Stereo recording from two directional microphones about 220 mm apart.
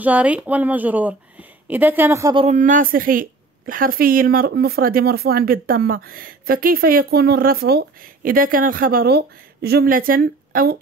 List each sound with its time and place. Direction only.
0.0 s a woman's voice: 5° right (ahead or behind)
2.4 s a woman's voice: 35° right (ahead or behind)